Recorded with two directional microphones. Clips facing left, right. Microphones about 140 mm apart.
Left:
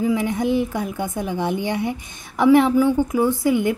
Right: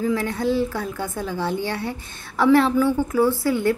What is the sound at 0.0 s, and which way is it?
A woman's voice, 15° left (ahead or behind).